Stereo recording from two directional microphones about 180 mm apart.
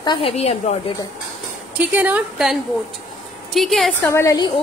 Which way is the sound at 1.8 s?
10° right (ahead or behind).